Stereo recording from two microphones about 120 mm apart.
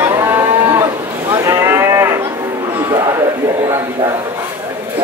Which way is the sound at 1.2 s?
20° right (ahead or behind).